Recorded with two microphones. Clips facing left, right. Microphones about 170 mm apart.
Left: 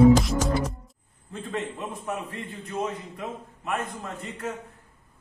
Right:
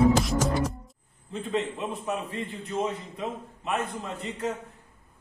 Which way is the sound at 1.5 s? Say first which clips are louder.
Right 3 dB; 15° right (ahead or behind).